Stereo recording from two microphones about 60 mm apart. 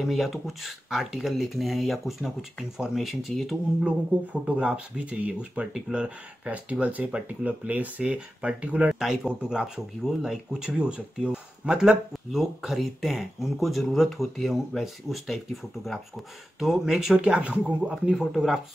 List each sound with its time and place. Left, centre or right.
0.0 s speech: centre
3.8 s speech: right
12.4 s speech: centre
18.1 s speech: centre